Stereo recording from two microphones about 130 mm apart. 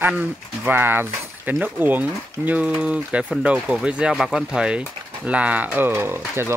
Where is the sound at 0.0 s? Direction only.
15° right (ahead or behind).